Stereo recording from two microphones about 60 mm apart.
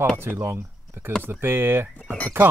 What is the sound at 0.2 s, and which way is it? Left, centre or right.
Speech, right.